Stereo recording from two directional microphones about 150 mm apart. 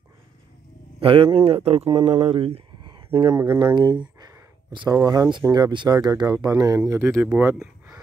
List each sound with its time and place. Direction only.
1.0 s speech: 35° right (ahead or behind)
4.2 s a sound: 25° right (ahead or behind)
5.4 s speech: 25° right (ahead or behind); by 8.0 s 10° right (ahead or behind)